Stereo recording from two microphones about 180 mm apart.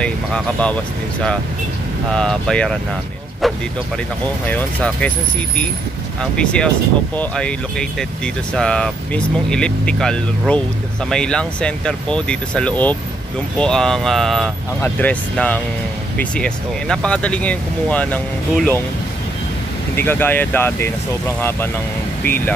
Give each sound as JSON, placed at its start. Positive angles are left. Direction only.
{"t": 0.0, "sound": "speech", "side_deg": 5}
{"t": 2.1, "sound": "speech", "side_deg": 5}
{"t": 4.5, "sound": "speech", "side_deg": 10}
{"t": 6.3, "sound": "speech", "side_deg": 5}
{"t": 20.0, "sound": "speech", "side_deg": 10}